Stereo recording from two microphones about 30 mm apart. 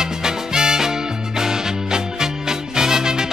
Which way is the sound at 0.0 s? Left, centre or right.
Right.